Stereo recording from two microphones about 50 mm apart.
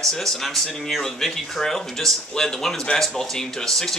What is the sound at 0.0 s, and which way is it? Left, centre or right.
Speech, centre.